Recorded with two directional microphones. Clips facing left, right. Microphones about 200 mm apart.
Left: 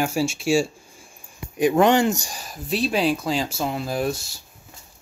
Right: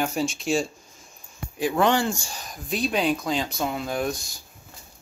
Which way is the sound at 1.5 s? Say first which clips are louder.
Left 5 dB; 20° left (ahead or behind).